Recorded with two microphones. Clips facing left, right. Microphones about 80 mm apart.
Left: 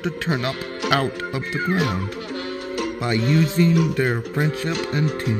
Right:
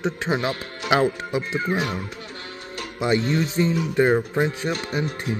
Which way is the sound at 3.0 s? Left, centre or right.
Right.